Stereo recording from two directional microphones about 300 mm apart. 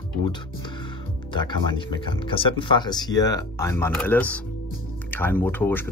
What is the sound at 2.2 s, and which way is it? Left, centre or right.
Speech, centre.